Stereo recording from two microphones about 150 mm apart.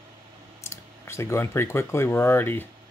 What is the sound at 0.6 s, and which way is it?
Speech, 20° left (ahead or behind).